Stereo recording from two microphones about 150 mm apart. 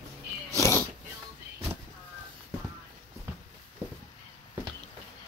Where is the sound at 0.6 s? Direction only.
20° left (ahead or behind).